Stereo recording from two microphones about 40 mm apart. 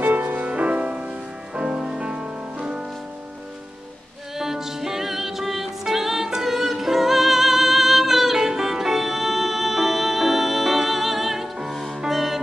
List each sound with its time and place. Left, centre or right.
0.0 s music: right
0.5 s music: right
4.4 s music: centre